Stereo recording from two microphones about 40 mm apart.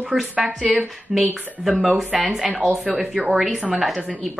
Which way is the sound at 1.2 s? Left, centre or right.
Centre.